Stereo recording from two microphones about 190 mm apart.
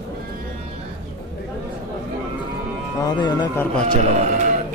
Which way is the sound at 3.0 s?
25° left (ahead or behind).